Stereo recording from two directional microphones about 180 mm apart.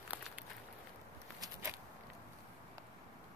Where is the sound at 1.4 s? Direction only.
15° right (ahead or behind).